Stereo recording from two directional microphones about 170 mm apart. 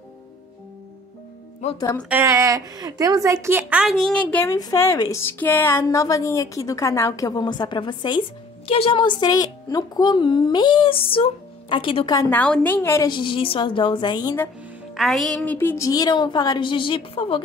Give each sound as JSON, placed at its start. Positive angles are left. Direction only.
{"t": 2.0, "sound": "a woman's voice", "side_deg": -15}
{"t": 4.0, "sound": "a woman's voice", "side_deg": 5}
{"t": 4.6, "sound": "speech", "side_deg": 20}
{"t": 12.2, "sound": "a woman's voice", "side_deg": 10}
{"t": 13.1, "sound": "speech", "side_deg": 30}
{"t": 15.0, "sound": "speech", "side_deg": 0}